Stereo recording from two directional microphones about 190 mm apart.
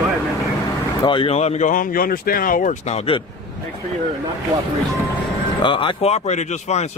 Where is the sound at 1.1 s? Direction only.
30° left (ahead or behind).